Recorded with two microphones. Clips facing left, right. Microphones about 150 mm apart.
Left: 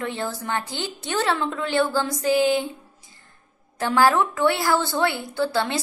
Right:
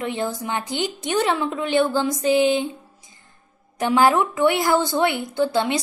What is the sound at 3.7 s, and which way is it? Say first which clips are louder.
A woman's voice: right 2 dB; 20° right (ahead or behind).